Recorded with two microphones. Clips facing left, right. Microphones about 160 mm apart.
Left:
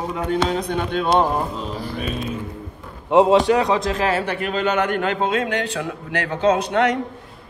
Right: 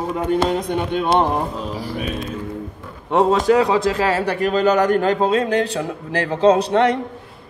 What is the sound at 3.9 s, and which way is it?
A man's voice, 35° right (ahead or behind).